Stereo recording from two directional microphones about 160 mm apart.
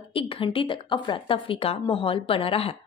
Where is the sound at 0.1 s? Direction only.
35° left (ahead or behind).